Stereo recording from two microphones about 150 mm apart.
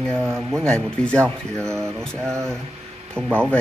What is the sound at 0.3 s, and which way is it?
Speech, 5° left (ahead or behind).